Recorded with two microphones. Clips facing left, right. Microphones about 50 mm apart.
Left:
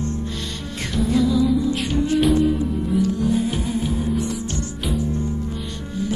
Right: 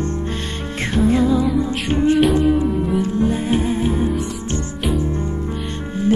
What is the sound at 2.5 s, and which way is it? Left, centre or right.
Music, right.